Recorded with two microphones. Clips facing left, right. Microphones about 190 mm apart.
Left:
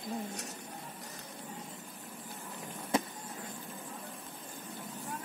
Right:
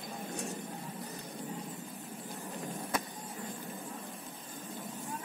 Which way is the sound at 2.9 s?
25° left (ahead or behind).